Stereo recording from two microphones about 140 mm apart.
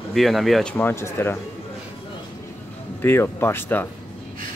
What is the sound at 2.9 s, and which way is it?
Speech, 15° left (ahead or behind).